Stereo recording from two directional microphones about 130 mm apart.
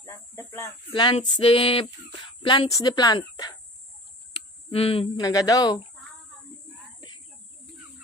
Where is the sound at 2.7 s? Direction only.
30° left (ahead or behind).